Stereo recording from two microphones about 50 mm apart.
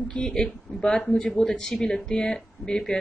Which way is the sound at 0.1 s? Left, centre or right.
Centre.